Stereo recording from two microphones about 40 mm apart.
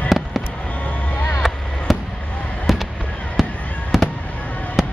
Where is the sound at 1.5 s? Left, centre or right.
Centre.